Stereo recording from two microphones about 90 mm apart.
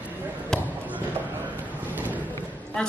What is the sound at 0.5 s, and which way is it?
Basketball bounce, 5° left (ahead or behind).